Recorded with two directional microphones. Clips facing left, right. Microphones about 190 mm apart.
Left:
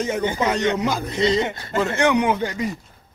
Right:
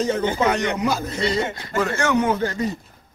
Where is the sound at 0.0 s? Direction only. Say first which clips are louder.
Right 2 dB; 15° left (ahead or behind).